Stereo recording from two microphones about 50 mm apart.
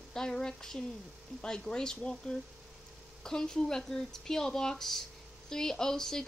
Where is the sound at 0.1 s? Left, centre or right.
Centre.